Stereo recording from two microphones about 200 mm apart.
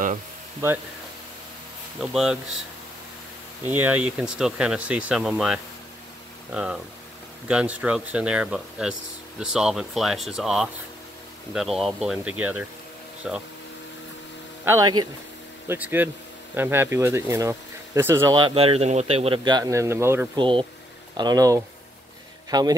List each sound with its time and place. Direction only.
2.0 s speech: centre (ahead or behind)
3.6 s speech: 10° right (ahead or behind)
14.6 s speech: 10° right (ahead or behind)
20.3 s a man's voice: 25° right (ahead or behind)